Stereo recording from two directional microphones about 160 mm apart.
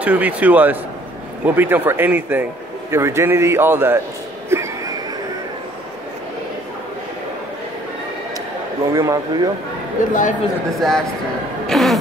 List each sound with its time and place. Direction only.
0.0 s a man's voice: 10° right (ahead or behind)
4.5 s a sound: 20° right (ahead or behind)
8.9 s speech: 20° right (ahead or behind)
10.0 s speech: 55° left (ahead or behind)
10.8 s speech: centre (ahead or behind)
11.6 s music: centre (ahead or behind)